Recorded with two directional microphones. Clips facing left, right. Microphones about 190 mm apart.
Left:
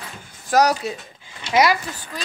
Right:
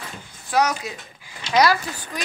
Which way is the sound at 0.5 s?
35° left (ahead or behind).